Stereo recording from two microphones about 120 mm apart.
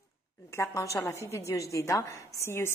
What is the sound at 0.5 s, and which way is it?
A woman's voice, 25° left (ahead or behind).